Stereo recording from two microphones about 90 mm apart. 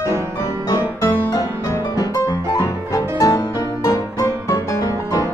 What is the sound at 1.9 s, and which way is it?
Piano, 45° left (ahead or behind).